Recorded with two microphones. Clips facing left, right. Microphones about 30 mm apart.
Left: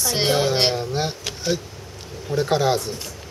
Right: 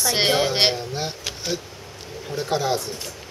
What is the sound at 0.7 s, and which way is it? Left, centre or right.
Speech, centre.